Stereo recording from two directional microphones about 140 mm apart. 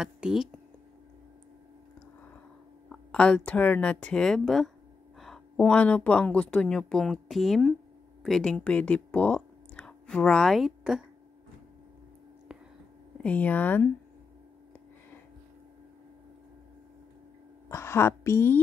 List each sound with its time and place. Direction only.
0.0 s speech: 5° right (ahead or behind)
2.9 s a sound: 5° left (ahead or behind)
3.3 s a woman's voice: 10° left (ahead or behind); by 11.1 s 5° right (ahead or behind)
13.2 s speech: 10° left (ahead or behind)
17.6 s a woman's voice: 20° left (ahead or behind)